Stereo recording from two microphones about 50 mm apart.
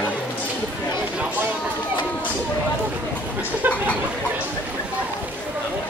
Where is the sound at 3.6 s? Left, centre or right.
Right.